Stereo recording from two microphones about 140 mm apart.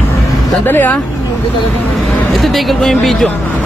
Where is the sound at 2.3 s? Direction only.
Centre (ahead or behind).